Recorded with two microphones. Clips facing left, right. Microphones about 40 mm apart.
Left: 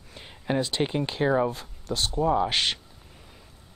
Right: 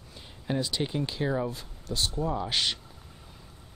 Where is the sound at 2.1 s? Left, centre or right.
Left.